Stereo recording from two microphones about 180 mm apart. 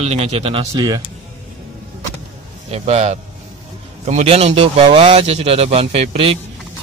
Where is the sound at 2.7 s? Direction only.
40° right (ahead or behind).